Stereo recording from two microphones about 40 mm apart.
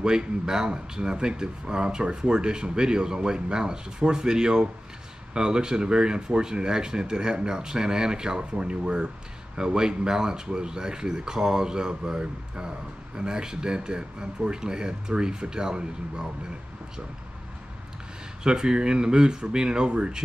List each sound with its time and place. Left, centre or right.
0.0 s speech: centre
18.4 s speech: centre